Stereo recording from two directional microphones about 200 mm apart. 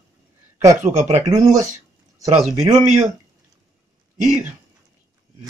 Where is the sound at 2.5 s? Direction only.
35° right (ahead or behind).